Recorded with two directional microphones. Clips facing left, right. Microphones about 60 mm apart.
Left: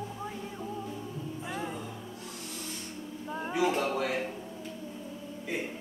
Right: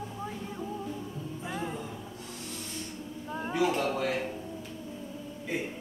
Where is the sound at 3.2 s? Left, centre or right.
Centre.